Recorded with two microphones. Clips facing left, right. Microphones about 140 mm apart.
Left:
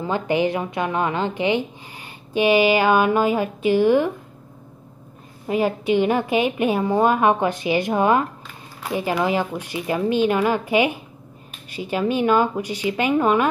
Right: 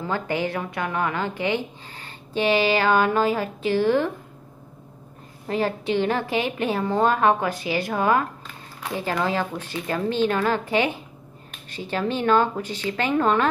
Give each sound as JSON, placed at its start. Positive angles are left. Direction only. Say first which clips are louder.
{"t": 0.0, "sound": "a woman's voice", "louder": "left 5 dB", "side_deg": 20}
{"t": 5.5, "sound": "a woman's voice", "louder": "left 4 dB", "side_deg": 15}